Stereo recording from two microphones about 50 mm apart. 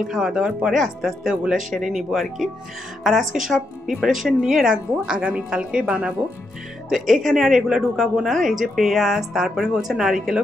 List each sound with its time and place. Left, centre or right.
0.0 s a woman's voice: centre
5.2 s a woman's voice: right
6.9 s a woman's voice: centre